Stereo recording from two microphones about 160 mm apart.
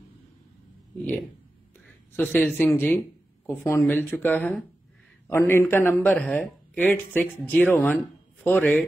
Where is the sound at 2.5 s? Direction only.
15° left (ahead or behind).